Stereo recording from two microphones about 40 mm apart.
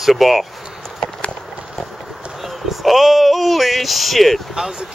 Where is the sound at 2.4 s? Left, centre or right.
Centre.